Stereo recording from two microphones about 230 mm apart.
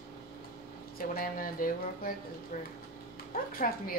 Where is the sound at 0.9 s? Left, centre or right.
Left.